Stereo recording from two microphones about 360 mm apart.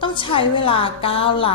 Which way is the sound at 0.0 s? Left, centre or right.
Centre.